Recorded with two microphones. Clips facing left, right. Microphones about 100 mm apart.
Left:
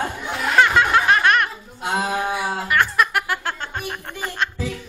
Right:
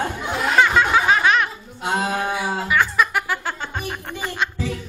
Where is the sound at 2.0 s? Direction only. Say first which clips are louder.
Left 1 dB; 15° left (ahead or behind).